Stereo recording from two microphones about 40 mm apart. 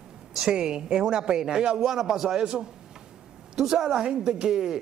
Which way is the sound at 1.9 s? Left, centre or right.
Centre.